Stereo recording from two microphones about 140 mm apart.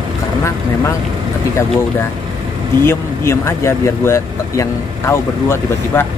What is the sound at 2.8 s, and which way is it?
Speech, 20° left (ahead or behind).